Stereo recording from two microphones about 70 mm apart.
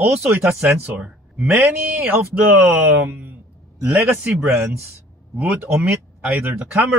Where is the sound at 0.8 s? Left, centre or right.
Centre.